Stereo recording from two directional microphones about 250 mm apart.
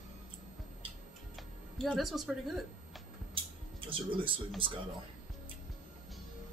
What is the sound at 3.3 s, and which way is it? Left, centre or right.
Music, right.